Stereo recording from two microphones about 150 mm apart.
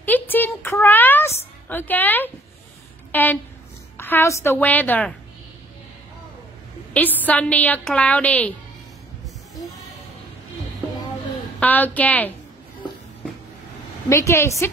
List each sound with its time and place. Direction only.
0.0 s a sound: 10° left (ahead or behind)
1.7 s a woman's voice: 10° left (ahead or behind)
3.1 s a sound: 10° left (ahead or behind)
3.9 s a woman's voice: 15° left (ahead or behind)
6.9 s a woman's voice: 10° left (ahead or behind)
11.6 s a woman's voice: 10° left (ahead or behind)
14.0 s a woman's voice: 20° left (ahead or behind)